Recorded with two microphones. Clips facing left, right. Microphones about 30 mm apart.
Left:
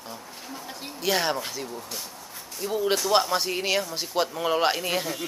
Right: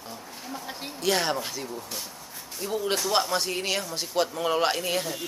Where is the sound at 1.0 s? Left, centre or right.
Centre.